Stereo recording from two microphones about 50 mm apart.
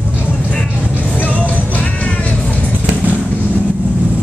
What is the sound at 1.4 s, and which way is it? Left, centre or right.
Music, left.